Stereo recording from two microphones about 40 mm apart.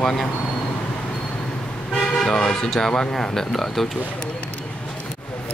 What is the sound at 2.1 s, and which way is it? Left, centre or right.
Speech, centre.